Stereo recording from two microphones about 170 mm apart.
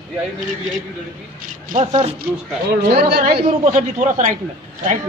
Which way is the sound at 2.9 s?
65° right (ahead or behind).